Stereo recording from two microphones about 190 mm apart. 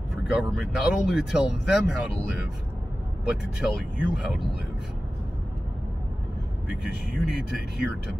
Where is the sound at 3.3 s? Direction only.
5° right (ahead or behind).